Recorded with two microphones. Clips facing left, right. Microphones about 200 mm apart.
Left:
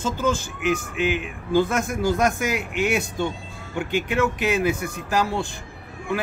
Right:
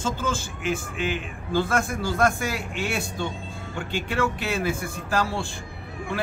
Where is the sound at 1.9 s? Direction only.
20° left (ahead or behind).